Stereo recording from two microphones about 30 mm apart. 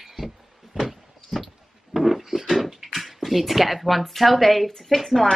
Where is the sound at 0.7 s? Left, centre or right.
Centre.